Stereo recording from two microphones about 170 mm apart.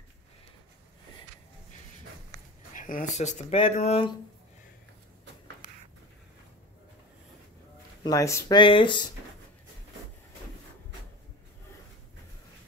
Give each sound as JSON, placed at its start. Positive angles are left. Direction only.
{"t": 2.7, "sound": "speech", "side_deg": 50}
{"t": 8.0, "sound": "speech", "side_deg": 20}
{"t": 8.5, "sound": "speech", "side_deg": 30}